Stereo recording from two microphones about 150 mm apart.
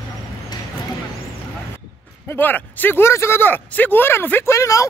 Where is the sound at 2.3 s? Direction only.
10° left (ahead or behind).